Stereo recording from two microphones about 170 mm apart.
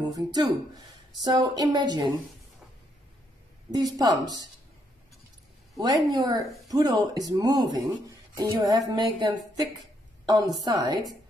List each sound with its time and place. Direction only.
0.0 s speech: 25° right (ahead or behind)
3.7 s speech: 25° right (ahead or behind)
5.8 s a woman's voice: 25° right (ahead or behind)